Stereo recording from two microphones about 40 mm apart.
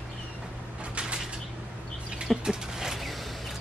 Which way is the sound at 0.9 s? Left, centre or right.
Right.